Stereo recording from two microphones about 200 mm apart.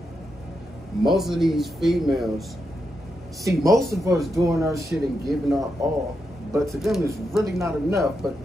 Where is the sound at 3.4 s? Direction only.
15° right (ahead or behind).